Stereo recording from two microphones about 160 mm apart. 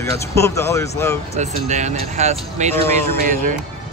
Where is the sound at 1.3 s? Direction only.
45° right (ahead or behind).